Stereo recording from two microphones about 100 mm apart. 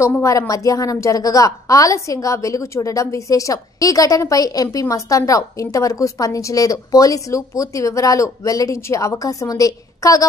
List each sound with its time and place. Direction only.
0.0 s a woman's voice: 30° left (ahead or behind)